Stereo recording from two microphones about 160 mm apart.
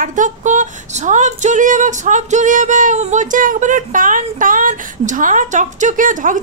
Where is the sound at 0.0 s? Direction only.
55° right (ahead or behind).